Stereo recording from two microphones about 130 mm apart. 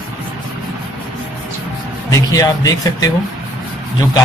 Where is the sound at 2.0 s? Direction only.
25° left (ahead or behind).